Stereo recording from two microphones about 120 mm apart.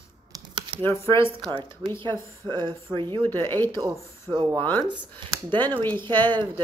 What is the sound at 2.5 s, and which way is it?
Speech, 40° right (ahead or behind).